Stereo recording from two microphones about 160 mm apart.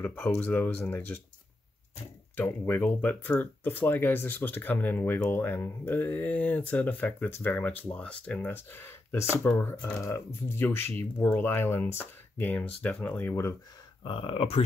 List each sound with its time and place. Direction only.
0.0 s speech: 10° left (ahead or behind)
2.3 s speech: 10° left (ahead or behind)
14.0 s speech: 35° left (ahead or behind)